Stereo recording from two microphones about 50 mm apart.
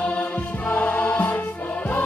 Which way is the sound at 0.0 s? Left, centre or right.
Left.